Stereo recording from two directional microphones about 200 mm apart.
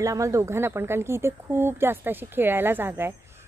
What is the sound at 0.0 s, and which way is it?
A woman's voice, 15° right (ahead or behind).